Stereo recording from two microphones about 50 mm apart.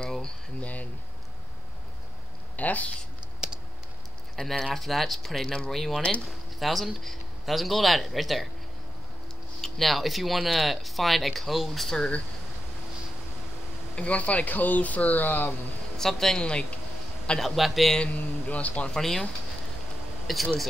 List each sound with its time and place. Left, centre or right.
0.0 s a sound: centre
0.6 s a sound: left
2.5 s speech: left
4.4 s speech: centre
9.6 s speech: centre
13.9 s speech: left
16.0 s a man's voice: centre
17.9 s a man's voice: left
18.9 s speech: centre
20.3 s speech: centre